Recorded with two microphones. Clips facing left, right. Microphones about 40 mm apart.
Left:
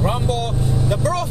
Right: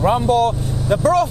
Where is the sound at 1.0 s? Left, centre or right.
Right.